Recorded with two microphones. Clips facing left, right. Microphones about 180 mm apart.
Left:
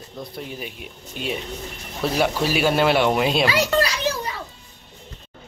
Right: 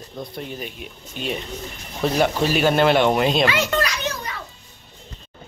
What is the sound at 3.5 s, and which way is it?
Speech, 35° left (ahead or behind).